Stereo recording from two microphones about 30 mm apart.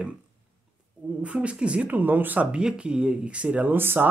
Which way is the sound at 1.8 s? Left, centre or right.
Right.